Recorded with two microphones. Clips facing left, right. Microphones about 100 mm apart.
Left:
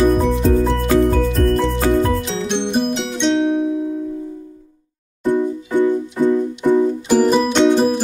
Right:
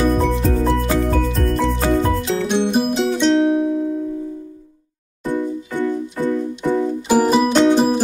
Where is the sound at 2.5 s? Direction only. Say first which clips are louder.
Right 1 dB; 5° right (ahead or behind).